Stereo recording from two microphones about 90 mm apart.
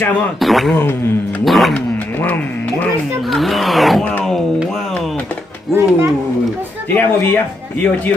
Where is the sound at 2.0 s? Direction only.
20° left (ahead or behind).